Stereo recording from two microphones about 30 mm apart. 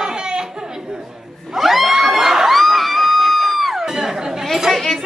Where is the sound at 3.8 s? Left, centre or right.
Centre.